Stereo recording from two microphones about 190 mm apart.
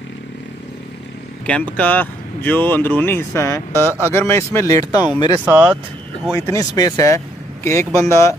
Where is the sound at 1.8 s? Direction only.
10° left (ahead or behind).